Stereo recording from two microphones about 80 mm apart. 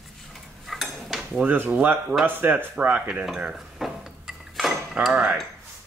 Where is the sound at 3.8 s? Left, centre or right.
Centre.